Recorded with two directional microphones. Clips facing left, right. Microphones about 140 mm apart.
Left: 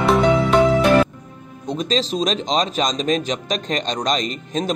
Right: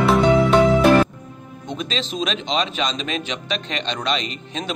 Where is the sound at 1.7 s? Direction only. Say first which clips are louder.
Left 6 dB; 35° left (ahead or behind).